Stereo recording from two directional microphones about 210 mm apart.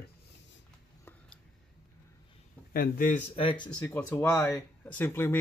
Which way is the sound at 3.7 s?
10° left (ahead or behind).